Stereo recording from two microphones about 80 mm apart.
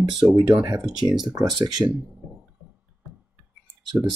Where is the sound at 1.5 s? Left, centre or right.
Right.